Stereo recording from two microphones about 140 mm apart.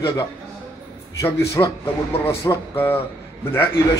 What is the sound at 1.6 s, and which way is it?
A man's voice, 20° left (ahead or behind).